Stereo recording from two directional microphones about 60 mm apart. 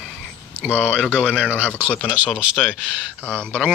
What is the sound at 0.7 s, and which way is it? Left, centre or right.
Speech, left.